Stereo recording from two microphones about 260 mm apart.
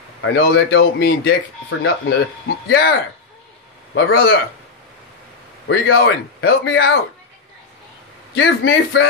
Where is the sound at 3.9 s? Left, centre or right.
Left.